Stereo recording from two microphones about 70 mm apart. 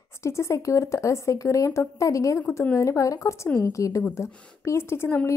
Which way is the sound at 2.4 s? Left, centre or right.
Left.